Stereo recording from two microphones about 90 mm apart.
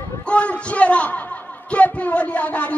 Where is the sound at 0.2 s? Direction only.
15° left (ahead or behind).